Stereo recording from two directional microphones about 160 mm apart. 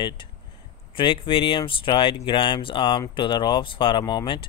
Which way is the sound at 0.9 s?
30° left (ahead or behind).